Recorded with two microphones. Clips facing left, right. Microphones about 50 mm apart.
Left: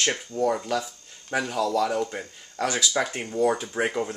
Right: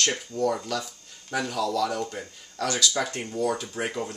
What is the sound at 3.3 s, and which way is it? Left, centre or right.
Speech, left.